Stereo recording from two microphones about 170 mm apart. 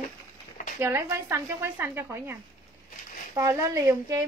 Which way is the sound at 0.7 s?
15° right (ahead or behind).